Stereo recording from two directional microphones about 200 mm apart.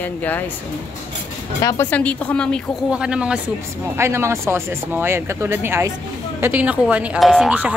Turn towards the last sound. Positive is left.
turn(degrees=-5)  # may be behind; listen again after turning